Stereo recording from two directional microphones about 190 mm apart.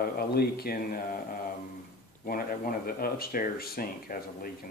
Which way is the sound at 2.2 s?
50° left (ahead or behind).